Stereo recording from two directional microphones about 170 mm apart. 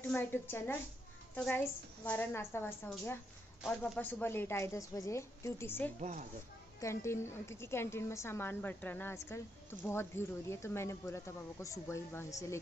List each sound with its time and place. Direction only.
0.0 s a woman's voice: 10° left (ahead or behind)
5.9 s a woman's voice: 45° right (ahead or behind)
6.8 s a woman's voice: 15° left (ahead or behind)